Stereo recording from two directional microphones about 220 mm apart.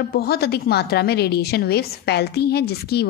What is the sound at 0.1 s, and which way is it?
A woman's voice, 45° left (ahead or behind).